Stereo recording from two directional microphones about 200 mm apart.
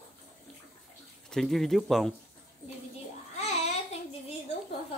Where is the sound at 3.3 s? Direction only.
30° left (ahead or behind).